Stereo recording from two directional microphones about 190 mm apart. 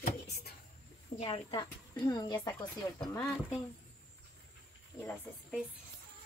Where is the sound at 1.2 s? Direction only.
30° left (ahead or behind).